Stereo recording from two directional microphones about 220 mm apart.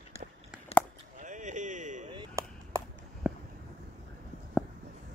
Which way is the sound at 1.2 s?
35° right (ahead or behind).